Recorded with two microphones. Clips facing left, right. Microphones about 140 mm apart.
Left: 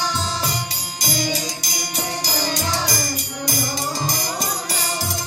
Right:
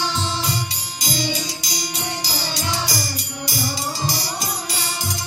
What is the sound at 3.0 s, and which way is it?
Music, 50° left (ahead or behind).